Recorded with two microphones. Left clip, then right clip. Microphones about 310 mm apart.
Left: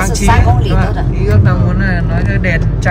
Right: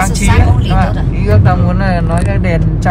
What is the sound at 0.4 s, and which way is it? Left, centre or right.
Vehicle, centre.